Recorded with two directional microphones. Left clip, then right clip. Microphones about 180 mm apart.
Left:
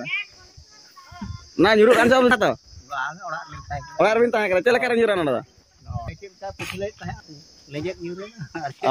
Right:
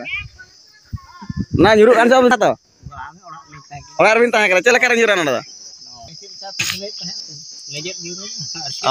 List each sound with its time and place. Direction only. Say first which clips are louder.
0.1 s a child's voice: even; 35° left (ahead or behind)
1.6 s a man's voice: right 5 dB; 25° right (ahead or behind)
2.9 s speech: left 6 dB; 25° left (ahead or behind)
3.9 s a man's voice: right 6 dB; 15° right (ahead or behind)
6.0 s cricket: right 4 dB; 5° left (ahead or behind)
7.7 s speech: right 1 dB; 10° left (ahead or behind)